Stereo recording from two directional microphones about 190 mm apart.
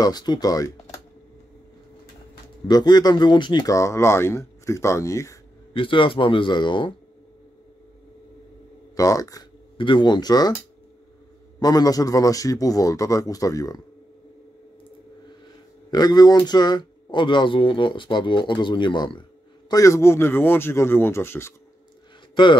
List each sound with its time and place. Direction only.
0.0 s speech: 20° left (ahead or behind)
2.7 s speech: 20° left (ahead or behind)
5.7 s speech: 25° left (ahead or behind)
8.9 s speech: 20° left (ahead or behind)
11.6 s speech: 20° left (ahead or behind)
15.9 s speech: 20° left (ahead or behind)
22.3 s speech: 25° left (ahead or behind)